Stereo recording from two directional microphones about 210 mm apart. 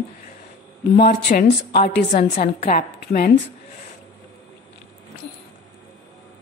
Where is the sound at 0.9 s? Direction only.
45° left (ahead or behind).